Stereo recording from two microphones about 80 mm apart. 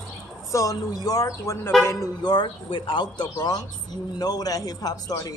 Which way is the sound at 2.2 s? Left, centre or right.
Left.